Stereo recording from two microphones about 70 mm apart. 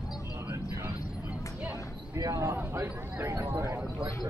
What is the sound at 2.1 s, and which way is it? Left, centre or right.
Speech, right.